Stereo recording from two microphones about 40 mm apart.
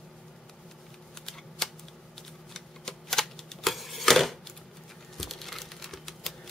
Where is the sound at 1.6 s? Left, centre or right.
Centre.